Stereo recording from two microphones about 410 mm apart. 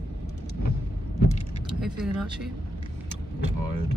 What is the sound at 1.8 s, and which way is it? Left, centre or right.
Speech, centre.